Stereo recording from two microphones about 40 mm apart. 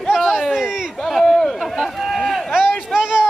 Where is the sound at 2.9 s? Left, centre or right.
Centre.